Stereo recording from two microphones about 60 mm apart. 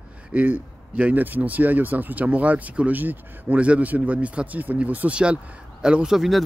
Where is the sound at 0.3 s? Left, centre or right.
Right.